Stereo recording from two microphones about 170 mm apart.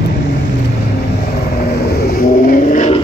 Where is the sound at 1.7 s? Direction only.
70° left (ahead or behind); by 3.0 s 45° left (ahead or behind).